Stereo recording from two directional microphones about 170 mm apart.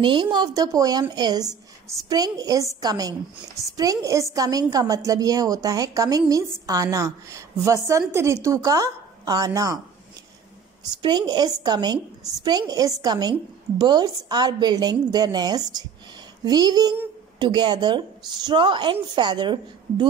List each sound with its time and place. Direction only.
0.0 s a woman's voice: 25° right (ahead or behind)
10.8 s a woman's voice: 25° right (ahead or behind)